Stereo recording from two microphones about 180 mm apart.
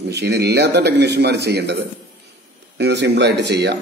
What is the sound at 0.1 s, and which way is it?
A man's voice, 70° right (ahead or behind).